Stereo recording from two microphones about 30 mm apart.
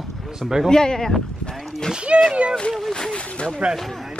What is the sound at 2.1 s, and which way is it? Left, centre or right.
Speech, right.